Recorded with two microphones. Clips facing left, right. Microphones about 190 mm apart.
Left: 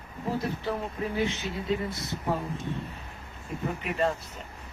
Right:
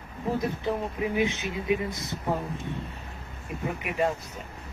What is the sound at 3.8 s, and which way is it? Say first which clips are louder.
Speech: right 1 dB; 10° right (ahead or behind).